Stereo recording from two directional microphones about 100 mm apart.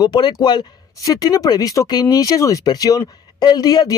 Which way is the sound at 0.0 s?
45° left (ahead or behind).